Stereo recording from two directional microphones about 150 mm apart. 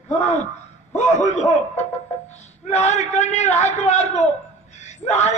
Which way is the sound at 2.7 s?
50° left (ahead or behind).